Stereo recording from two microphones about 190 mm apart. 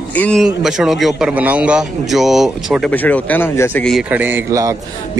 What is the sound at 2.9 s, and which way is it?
A man's voice, 10° left (ahead or behind).